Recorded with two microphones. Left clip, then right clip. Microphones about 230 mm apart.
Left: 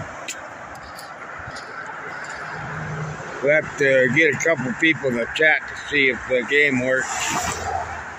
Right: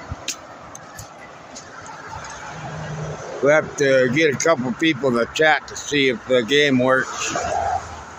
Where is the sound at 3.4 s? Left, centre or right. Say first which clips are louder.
Right 2 dB; centre.